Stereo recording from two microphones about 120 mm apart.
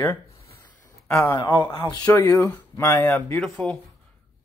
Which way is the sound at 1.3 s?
40° left (ahead or behind).